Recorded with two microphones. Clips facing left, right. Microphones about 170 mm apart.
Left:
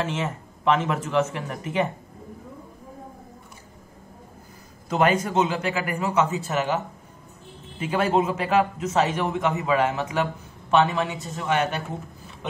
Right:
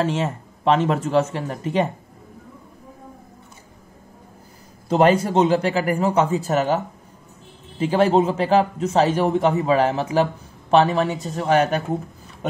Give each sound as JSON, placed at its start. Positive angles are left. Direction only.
{"t": 0.0, "sound": "a man's voice", "side_deg": -35}
{"t": 4.8, "sound": "a man's voice", "side_deg": -30}
{"t": 7.8, "sound": "a man's voice", "side_deg": -30}